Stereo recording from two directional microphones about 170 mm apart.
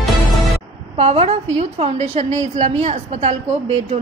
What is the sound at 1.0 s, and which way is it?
A woman's voice, 40° right (ahead or behind).